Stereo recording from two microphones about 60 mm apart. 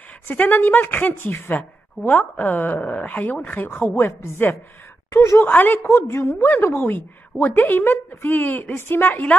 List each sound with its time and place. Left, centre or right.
0.3 s a woman's voice: left
3.8 s a woman's voice: left
5.4 s a woman's voice: left
5.8 s a woman's voice: left